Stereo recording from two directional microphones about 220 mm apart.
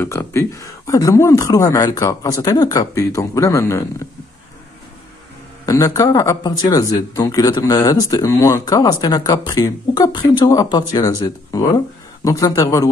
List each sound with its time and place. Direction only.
0.0 s speech: 10° left (ahead or behind)
5.7 s speech: 15° left (ahead or behind)